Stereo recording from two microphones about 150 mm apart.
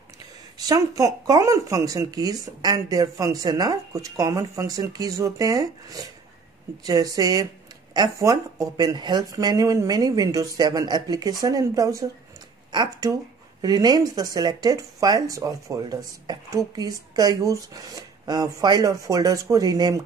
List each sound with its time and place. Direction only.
0.6 s speech: 25° right (ahead or behind)